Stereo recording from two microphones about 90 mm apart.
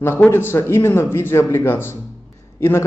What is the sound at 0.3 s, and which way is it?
Speech, 25° left (ahead or behind).